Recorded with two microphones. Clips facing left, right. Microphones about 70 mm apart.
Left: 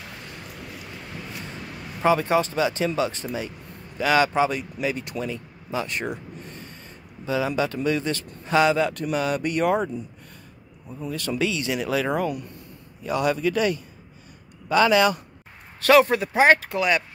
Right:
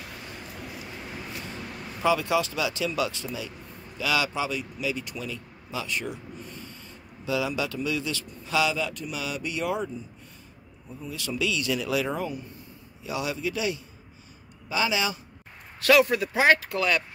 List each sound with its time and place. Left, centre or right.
2.0 s a man's voice: left
11.4 s speech: left
12.1 s speech: left
13.0 s a man's voice: left
15.8 s speech: left